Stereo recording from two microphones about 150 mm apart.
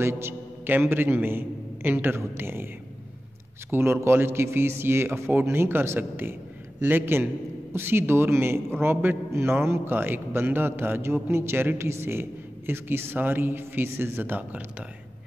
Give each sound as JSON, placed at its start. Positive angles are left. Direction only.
{"t": 0.0, "sound": "a man's voice", "side_deg": -15}
{"t": 3.7, "sound": "a man's voice", "side_deg": -15}